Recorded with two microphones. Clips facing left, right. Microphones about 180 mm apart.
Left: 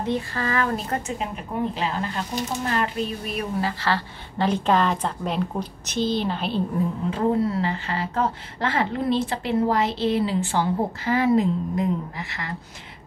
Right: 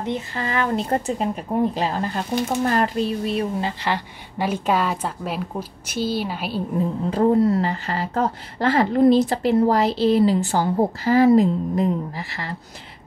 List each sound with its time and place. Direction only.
0.0 s a woman's voice: 20° right (ahead or behind)
7.1 s speech: 40° right (ahead or behind)